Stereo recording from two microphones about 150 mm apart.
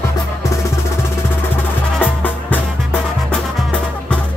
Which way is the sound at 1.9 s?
10° left (ahead or behind).